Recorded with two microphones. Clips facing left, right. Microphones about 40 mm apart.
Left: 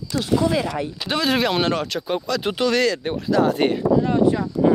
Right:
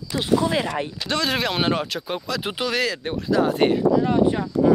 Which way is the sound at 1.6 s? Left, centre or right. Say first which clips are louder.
Left 1 dB; centre.